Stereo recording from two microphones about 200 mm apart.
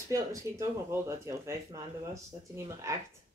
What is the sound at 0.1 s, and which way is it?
Speech, 15° right (ahead or behind).